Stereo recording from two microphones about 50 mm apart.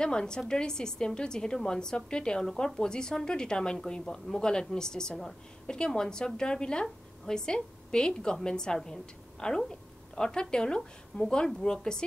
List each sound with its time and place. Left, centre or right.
0.0 s a woman's voice: centre